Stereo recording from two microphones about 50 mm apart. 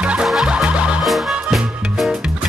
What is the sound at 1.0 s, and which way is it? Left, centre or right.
Music, centre.